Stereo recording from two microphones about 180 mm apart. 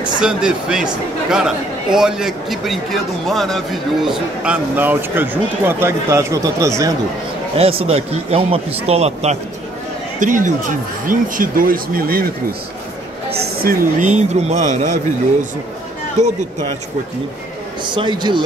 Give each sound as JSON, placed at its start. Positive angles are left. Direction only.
{"t": 0.2, "sound": "a man's voice", "side_deg": -5}
{"t": 7.5, "sound": "speech", "side_deg": -35}
{"t": 13.3, "sound": "speech", "side_deg": -60}
{"t": 17.8, "sound": "a man's voice", "side_deg": -25}